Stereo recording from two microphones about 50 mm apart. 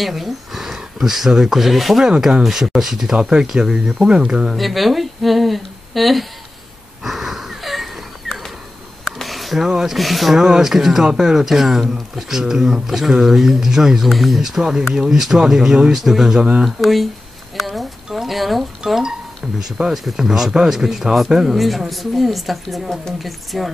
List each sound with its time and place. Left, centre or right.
0.0 s speech: centre
3.2 s speech: centre
7.0 s wheeze: centre
9.0 s speech: centre
14.6 s speech: centre
16.3 s speech: centre
16.6 s speech: centre
17.6 s a sound: centre
18.9 s speech: centre